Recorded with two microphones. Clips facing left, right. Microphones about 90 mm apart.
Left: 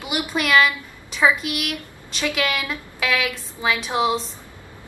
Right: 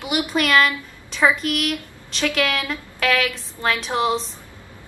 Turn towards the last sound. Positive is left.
turn(degrees=5)  # may be behind; listen again after turning